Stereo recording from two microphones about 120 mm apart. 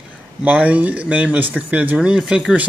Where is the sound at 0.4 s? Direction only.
10° right (ahead or behind).